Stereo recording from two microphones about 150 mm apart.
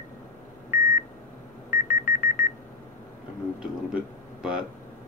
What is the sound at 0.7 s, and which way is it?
Beep, 70° left (ahead or behind).